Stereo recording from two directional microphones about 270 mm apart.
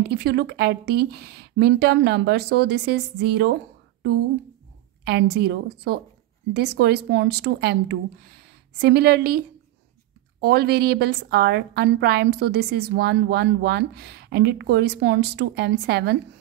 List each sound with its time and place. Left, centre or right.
0.0 s a woman's voice: right
10.4 s a woman's voice: right